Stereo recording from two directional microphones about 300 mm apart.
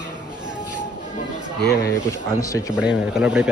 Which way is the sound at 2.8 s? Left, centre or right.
Centre.